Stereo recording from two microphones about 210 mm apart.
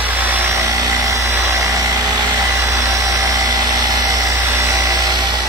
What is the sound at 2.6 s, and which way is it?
Engine, 15° right (ahead or behind).